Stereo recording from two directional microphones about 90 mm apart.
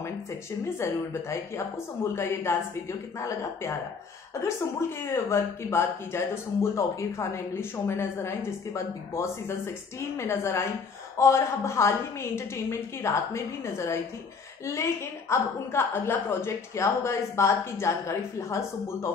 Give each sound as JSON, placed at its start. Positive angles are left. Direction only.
{"t": 0.0, "sound": "a woman's voice", "side_deg": 30}